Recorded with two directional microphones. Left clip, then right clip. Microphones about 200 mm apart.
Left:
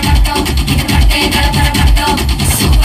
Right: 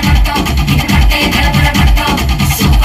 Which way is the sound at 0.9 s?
45° left (ahead or behind).